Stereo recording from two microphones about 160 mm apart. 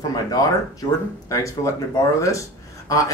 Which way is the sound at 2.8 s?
20° left (ahead or behind).